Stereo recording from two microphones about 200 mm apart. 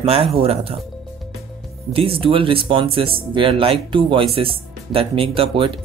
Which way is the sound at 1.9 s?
25° right (ahead or behind).